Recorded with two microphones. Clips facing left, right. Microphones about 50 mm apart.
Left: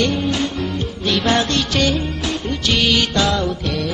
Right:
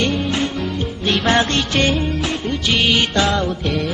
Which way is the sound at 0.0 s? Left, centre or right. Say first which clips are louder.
Even; right.